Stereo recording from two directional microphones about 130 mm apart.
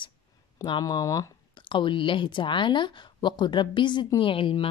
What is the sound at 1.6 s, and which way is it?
Speech, 40° left (ahead or behind).